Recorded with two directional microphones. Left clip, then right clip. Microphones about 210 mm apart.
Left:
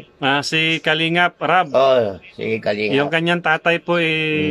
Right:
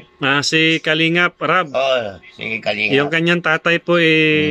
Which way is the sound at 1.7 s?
15° left (ahead or behind).